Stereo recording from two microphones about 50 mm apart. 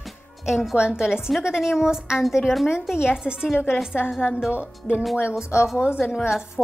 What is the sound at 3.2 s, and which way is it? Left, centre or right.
Speech, centre.